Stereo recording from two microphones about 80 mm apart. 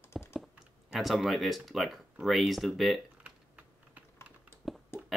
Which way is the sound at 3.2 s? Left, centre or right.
Centre.